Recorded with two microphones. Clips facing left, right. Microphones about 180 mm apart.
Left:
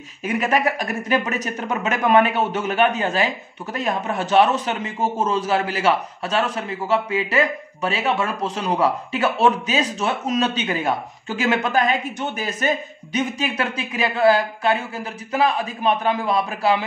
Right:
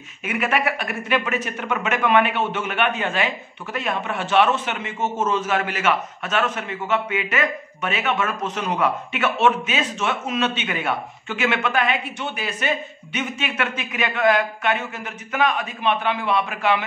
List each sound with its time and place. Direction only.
0.2 s speech: 35° left (ahead or behind)